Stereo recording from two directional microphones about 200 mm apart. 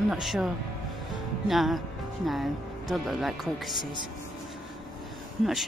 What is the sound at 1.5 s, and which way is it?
Speech, centre (ahead or behind).